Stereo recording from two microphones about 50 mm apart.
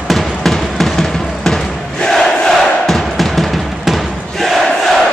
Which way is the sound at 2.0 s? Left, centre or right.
Centre.